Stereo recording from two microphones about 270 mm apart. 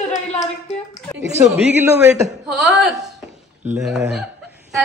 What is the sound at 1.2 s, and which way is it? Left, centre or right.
Speech, centre.